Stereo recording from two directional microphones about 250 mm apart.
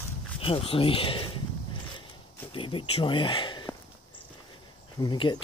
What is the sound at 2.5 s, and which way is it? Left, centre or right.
Speech, left.